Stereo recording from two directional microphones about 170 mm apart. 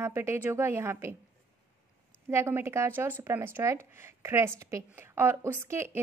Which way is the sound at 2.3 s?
15° right (ahead or behind).